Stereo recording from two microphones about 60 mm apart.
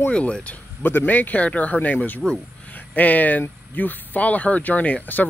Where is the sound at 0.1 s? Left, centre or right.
Centre.